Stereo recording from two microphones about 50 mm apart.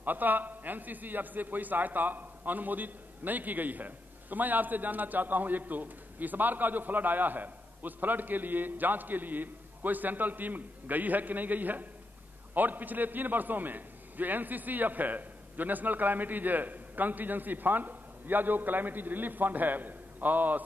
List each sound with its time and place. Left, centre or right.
0.0 s a man's voice: right